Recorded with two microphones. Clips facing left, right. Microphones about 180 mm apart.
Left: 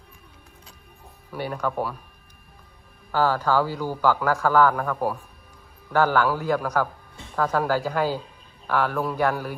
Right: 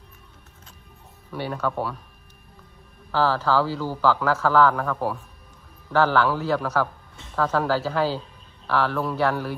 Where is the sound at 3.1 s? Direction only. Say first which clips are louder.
Even; 15° left (ahead or behind).